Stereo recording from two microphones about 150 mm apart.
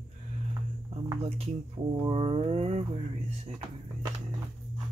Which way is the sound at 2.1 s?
40° right (ahead or behind).